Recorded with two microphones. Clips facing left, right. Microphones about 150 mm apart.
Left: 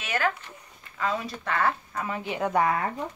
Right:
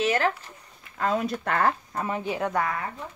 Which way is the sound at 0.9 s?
50° right (ahead or behind).